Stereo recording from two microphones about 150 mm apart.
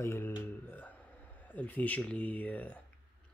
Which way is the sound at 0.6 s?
15° left (ahead or behind).